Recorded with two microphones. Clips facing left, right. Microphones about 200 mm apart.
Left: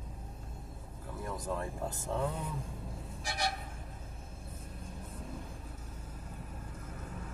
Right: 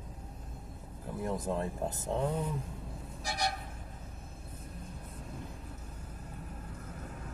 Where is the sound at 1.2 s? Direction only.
25° right (ahead or behind).